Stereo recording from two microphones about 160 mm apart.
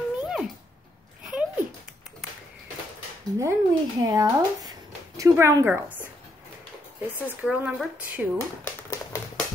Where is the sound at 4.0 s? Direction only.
25° right (ahead or behind).